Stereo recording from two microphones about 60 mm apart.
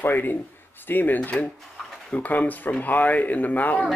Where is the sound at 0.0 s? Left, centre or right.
Left.